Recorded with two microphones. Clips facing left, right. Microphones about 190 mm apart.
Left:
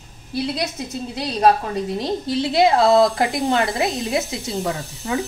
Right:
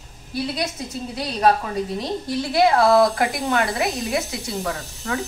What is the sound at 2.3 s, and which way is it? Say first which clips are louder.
A woman's voice: left 1 dB; 25° left (ahead or behind).